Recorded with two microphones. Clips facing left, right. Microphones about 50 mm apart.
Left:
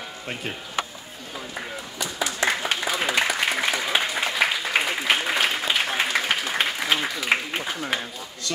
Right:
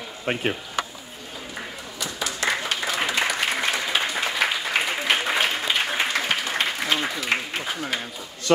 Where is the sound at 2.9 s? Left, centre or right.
Centre.